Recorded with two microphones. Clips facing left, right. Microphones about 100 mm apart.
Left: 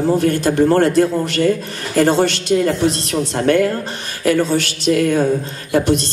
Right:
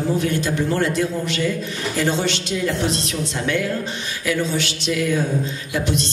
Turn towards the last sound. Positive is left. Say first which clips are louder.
# left 7 dB
turn(degrees=50)  # may be behind; listen again after turning